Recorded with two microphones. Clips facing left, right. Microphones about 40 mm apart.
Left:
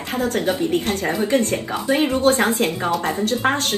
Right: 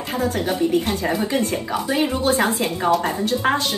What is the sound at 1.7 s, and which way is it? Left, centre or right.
Speech, left.